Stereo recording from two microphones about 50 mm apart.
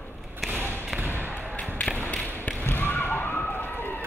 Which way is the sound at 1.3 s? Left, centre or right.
Left.